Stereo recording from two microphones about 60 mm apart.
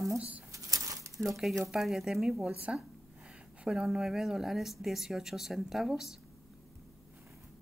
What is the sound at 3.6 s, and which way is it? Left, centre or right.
Speech, centre.